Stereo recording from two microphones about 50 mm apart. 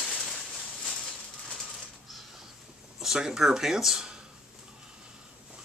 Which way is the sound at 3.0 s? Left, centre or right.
Centre.